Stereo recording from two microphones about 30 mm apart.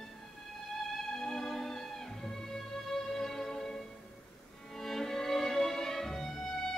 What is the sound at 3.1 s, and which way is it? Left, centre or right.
Music, centre.